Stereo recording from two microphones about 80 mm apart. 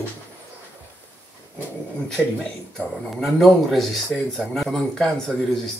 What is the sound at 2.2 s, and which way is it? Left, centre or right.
Speech, centre.